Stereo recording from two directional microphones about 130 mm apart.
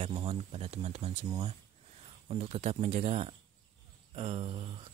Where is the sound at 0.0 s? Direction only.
45° right (ahead or behind).